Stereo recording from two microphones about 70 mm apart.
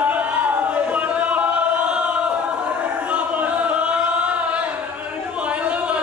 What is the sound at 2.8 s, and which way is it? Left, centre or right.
Choir, centre.